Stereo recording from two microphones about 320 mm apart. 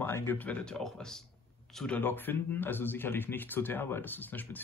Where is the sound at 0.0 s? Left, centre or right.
Centre.